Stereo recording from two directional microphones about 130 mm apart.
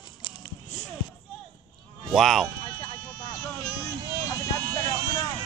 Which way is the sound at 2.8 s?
30° left (ahead or behind).